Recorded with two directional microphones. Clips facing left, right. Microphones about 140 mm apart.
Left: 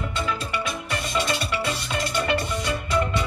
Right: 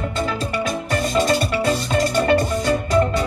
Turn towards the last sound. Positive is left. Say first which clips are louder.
# right 6 dB
turn(degrees=-40)  # may be behind; listen again after turning